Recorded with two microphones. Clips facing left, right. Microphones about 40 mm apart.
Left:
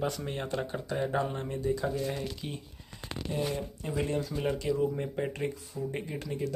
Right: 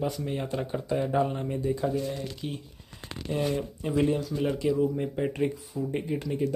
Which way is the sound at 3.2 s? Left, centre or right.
Right.